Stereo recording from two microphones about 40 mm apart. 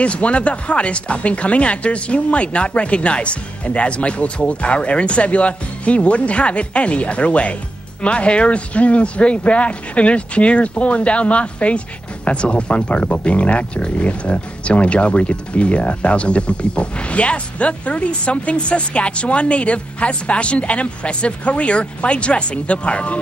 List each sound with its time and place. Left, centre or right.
0.0 s speech: left